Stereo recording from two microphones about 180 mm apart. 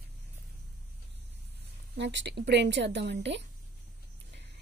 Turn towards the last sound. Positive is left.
turn(degrees=-80)